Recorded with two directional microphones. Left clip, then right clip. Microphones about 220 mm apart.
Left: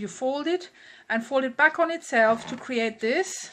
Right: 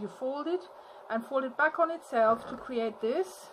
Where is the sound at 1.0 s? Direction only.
30° left (ahead or behind).